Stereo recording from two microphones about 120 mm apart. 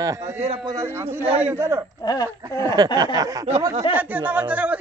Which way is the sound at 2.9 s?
30° right (ahead or behind).